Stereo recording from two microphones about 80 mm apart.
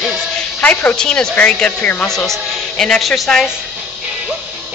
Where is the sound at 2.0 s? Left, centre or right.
Centre.